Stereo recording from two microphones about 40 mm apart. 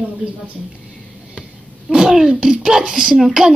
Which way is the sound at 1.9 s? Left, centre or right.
Centre.